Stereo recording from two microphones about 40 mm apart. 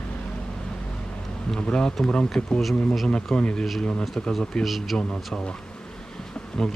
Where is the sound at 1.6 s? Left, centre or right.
Left.